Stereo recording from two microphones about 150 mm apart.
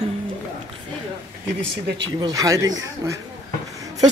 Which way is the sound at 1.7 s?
25° right (ahead or behind).